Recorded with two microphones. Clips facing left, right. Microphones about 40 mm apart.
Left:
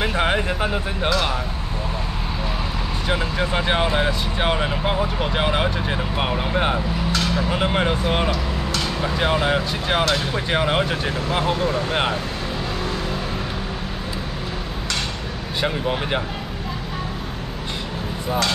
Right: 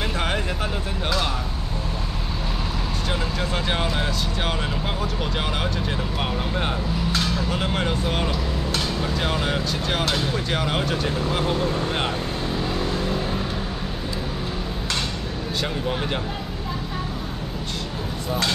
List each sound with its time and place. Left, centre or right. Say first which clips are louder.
0.0 s speech: left 5 dB; left
3.1 s speech: left 5 dB; left
15.6 s speech: left 5 dB; left